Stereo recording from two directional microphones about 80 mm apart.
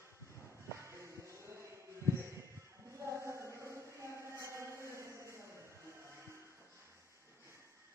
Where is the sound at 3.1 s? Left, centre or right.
Right.